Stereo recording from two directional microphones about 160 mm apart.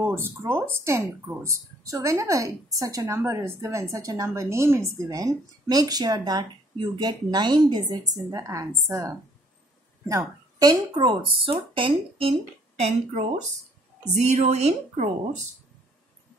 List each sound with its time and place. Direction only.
0.0 s a woman's voice: 15° right (ahead or behind); by 15.0 s 45° right (ahead or behind)